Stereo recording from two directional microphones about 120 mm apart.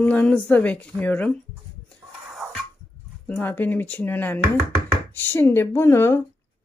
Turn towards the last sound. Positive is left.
turn(degrees=20)  # may be behind; listen again after turning